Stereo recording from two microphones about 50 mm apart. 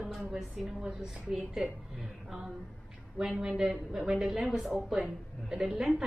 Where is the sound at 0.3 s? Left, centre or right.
Centre.